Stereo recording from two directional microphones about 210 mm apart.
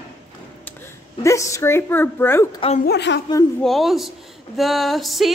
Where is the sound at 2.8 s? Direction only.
55° left (ahead or behind).